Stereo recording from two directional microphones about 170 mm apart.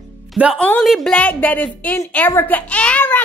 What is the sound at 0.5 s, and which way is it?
A woman's voice, 5° left (ahead or behind).